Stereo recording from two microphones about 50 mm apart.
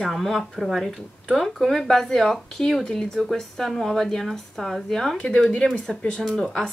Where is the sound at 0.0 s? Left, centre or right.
Centre.